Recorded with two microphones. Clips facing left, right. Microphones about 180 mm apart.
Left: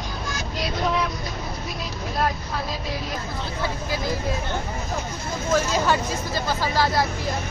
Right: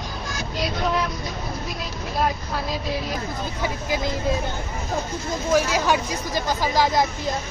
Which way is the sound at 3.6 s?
15° right (ahead or behind).